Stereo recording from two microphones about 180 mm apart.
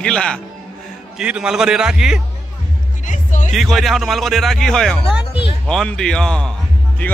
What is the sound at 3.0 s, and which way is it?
Music, 45° left (ahead or behind).